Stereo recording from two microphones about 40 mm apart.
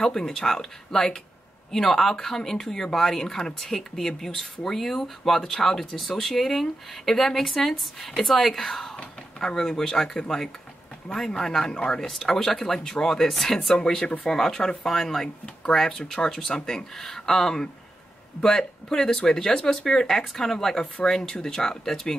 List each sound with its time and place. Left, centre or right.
0.0 s speech: centre
12.1 s speech: centre